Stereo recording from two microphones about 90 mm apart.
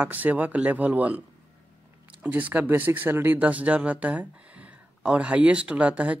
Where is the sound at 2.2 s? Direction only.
15° right (ahead or behind).